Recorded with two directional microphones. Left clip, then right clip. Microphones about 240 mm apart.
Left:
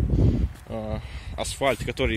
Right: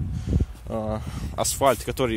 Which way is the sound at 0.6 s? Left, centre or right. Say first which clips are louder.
Right 6 dB; right.